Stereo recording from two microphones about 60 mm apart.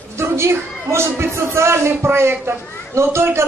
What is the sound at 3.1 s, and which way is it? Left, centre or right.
Speech, right.